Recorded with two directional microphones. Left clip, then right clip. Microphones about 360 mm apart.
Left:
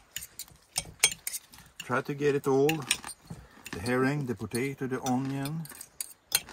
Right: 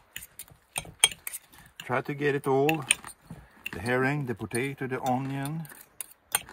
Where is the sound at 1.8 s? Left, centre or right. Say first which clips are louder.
Even; right.